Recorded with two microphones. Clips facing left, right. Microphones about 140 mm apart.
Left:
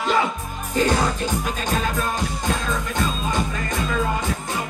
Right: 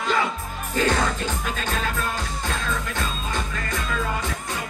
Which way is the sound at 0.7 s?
15° left (ahead or behind).